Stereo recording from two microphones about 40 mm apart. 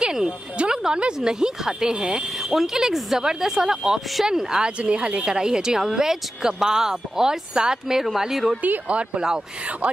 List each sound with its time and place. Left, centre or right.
0.0 s a sound: centre
1.4 s speech: centre
4.7 s speech: right; by 8.5 s centre
8.8 s speech: right